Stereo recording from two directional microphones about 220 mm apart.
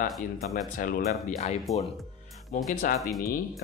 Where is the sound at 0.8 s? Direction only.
35° left (ahead or behind).